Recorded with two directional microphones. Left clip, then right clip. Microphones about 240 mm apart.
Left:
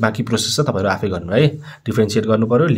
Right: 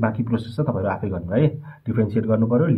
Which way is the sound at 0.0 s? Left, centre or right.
Left.